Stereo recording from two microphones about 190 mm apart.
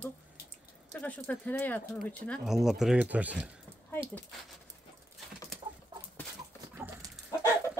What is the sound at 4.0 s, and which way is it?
Speech, 10° left (ahead or behind).